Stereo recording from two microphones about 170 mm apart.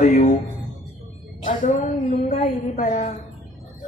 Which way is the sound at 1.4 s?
50° left (ahead or behind).